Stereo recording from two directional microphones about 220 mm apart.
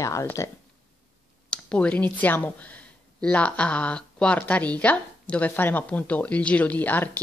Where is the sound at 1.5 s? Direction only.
5° left (ahead or behind).